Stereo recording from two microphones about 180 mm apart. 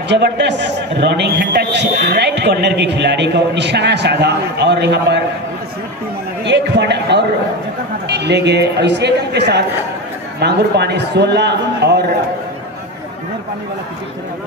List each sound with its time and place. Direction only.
0.1 s a man's voice: 75° right (ahead or behind)
6.4 s a man's voice: 70° right (ahead or behind)